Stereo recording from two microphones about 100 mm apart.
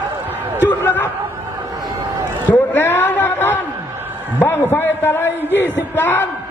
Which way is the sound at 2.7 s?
20° left (ahead or behind).